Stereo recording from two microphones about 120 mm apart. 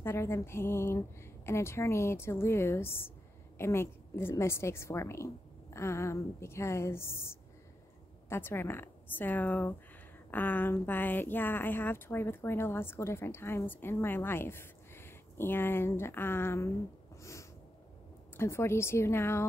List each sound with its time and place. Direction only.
0.0 s speech: 20° left (ahead or behind)
17.2 s snort: 25° left (ahead or behind)
18.3 s speech: 20° left (ahead or behind)